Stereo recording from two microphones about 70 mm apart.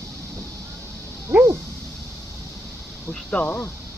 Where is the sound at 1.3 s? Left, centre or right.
Right.